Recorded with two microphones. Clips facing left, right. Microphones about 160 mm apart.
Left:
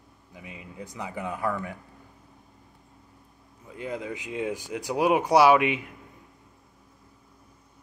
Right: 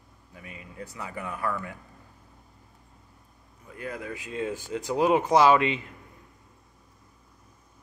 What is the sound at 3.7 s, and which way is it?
Speech, 20° left (ahead or behind).